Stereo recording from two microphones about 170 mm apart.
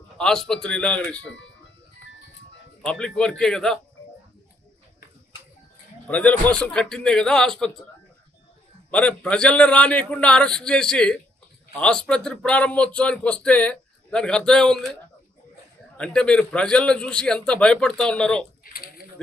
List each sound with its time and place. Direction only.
0.2 s speech: 5° left (ahead or behind)
2.8 s speech: 5° left (ahead or behind)
6.0 s speech: 10° left (ahead or behind)
8.9 s a man's voice: 5° left (ahead or behind)
16.0 s speech: 5° left (ahead or behind)
18.6 s a sound: 60° left (ahead or behind)